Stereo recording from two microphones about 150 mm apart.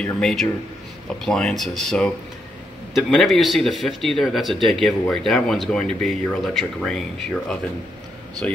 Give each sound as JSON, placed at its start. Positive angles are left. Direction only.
{"t": 0.0, "sound": "speech", "side_deg": 5}